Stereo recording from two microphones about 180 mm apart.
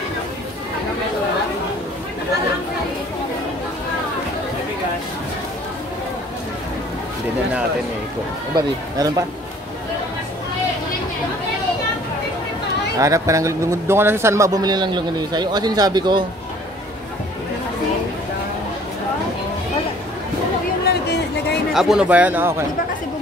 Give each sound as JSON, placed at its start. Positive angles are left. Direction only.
{"t": 8.5, "sound": "a man's voice", "side_deg": -20}
{"t": 13.0, "sound": "a man's voice", "side_deg": -15}
{"t": 20.8, "sound": "a sound", "side_deg": 65}
{"t": 21.7, "sound": "speech", "side_deg": -5}